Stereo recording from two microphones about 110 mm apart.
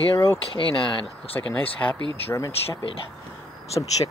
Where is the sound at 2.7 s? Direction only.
50° left (ahead or behind).